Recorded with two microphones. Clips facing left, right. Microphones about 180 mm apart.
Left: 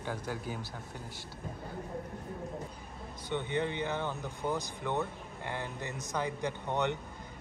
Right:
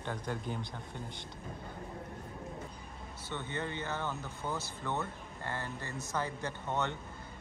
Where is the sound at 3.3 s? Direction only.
15° left (ahead or behind).